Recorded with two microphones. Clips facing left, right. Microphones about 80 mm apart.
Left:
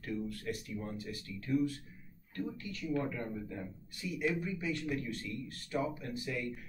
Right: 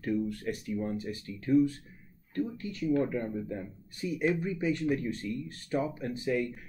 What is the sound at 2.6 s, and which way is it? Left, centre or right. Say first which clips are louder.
Speech: right 7 dB; right.